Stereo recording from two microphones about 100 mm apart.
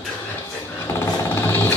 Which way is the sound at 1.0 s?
25° left (ahead or behind).